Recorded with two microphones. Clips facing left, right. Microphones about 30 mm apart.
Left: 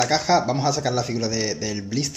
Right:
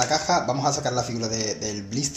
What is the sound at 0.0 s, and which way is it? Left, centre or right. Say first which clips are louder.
Speech: left 3 dB; centre.